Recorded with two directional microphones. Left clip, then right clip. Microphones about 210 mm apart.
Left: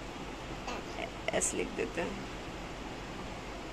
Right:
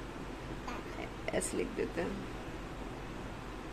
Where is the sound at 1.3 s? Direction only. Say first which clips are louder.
Left 2 dB; 20° right (ahead or behind).